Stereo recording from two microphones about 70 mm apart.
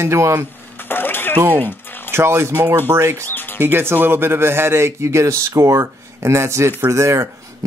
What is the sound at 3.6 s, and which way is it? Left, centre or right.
Speech, right.